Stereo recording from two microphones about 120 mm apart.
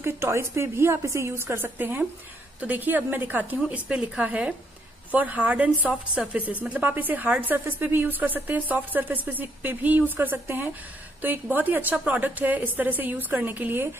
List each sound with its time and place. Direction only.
0.0 s a woman's voice: 20° right (ahead or behind)